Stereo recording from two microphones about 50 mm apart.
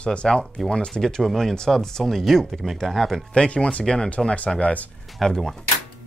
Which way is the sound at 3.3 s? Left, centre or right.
Left.